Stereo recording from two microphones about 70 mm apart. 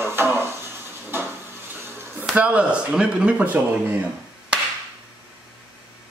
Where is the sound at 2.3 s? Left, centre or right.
Centre.